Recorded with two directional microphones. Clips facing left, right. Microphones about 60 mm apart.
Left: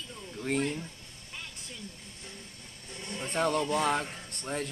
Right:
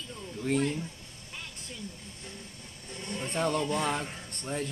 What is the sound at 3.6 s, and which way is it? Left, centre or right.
Speech, centre.